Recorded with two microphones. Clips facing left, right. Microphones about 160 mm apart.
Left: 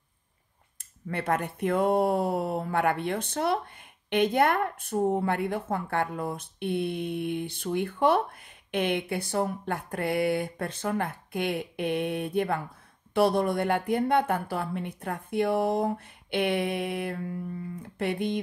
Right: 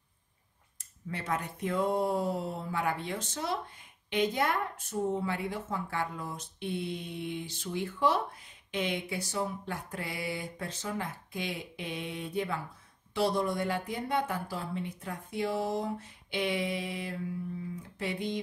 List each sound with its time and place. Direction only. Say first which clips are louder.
1.0 s speech: left 6 dB; 60° left (ahead or behind)